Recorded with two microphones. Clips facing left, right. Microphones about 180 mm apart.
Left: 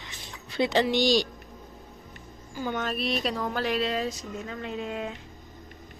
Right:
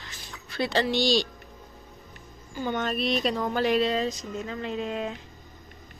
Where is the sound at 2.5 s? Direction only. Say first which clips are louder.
Right 2 dB; 5° left (ahead or behind).